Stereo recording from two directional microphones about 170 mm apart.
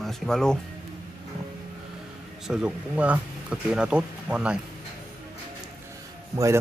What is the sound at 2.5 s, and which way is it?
Speech, 5° right (ahead or behind).